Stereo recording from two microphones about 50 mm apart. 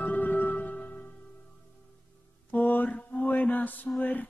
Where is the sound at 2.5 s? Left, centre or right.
Left.